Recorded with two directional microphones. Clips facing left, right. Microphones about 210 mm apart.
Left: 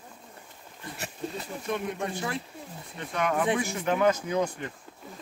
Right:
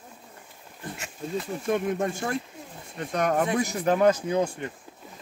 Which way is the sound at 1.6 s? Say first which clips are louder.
Right 5 dB; 45° right (ahead or behind).